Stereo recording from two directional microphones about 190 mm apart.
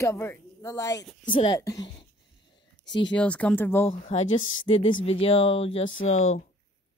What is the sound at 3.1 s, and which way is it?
Speech, 5° left (ahead or behind).